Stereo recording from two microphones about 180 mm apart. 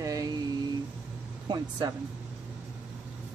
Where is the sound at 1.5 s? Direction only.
25° right (ahead or behind).